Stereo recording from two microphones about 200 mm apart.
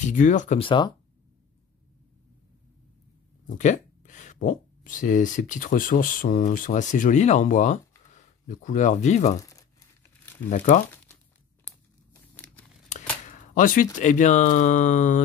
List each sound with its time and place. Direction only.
0.0 s speech: 40° left (ahead or behind); by 0.9 s 25° left (ahead or behind)
3.4 s speech: 40° left (ahead or behind)
9.4 s crumpling: 15° left (ahead or behind)
10.5 s speech: 40° left (ahead or behind)
11.6 s crumpling: 10° left (ahead or behind)
13.2 s speech: 40° left (ahead or behind)